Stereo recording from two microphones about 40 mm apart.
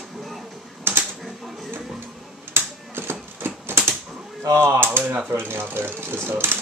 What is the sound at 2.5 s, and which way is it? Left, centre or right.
Typewriter, right.